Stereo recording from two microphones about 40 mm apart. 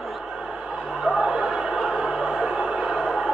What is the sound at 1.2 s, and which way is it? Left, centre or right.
Choir, centre.